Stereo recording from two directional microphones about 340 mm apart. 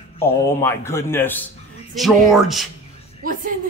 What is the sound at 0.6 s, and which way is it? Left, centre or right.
Speech, centre.